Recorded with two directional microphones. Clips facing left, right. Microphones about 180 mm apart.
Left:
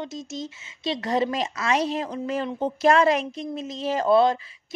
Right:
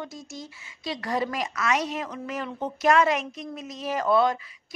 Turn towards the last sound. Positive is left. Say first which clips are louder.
# left 3 dB
turn(degrees=30)  # may be behind; listen again after turning